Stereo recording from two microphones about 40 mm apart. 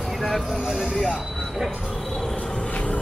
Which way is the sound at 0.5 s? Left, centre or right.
Centre.